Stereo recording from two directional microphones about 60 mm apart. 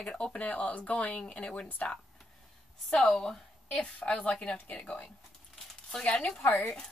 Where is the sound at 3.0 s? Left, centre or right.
Centre.